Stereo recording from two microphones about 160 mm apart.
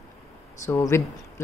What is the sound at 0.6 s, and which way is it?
Speech, 15° left (ahead or behind).